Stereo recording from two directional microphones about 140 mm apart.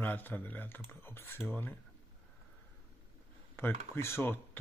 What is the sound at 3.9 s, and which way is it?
Speech, 15° left (ahead or behind).